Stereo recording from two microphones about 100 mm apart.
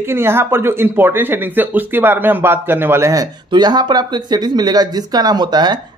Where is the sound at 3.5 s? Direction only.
45° right (ahead or behind).